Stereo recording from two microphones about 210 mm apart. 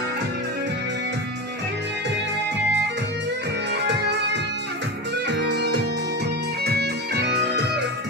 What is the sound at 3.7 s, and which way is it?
Music, 55° right (ahead or behind).